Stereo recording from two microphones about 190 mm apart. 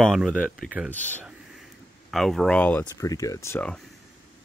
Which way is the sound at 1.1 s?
5° right (ahead or behind).